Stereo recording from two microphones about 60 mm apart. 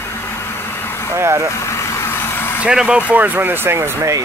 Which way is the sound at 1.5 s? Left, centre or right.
Left.